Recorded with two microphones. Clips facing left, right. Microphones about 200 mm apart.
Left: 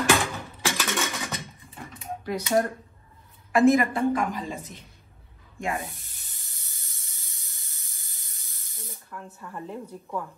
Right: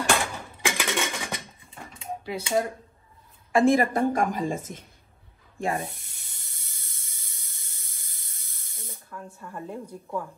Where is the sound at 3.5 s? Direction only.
30° right (ahead or behind); by 4.8 s 50° right (ahead or behind).